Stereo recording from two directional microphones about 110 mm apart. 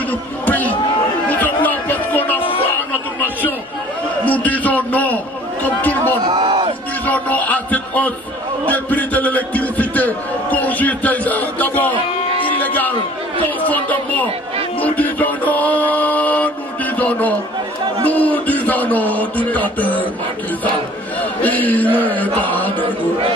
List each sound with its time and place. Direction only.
0.5 s a sound: 15° left (ahead or behind)
4.2 s a man's voice: 15° left (ahead or behind)
6.2 s crowd: 50° right (ahead or behind)
7.1 s a man's voice: 15° left (ahead or behind)
12.4 s music: 15° left (ahead or behind)
13.7 s a man's voice: 15° left (ahead or behind)
14.8 s music: 15° left (ahead or behind)
16.9 s a sound: 15° left (ahead or behind)
18.0 s a man's voice: 15° left (ahead or behind)
21.2 s a man's voice: 15° left (ahead or behind)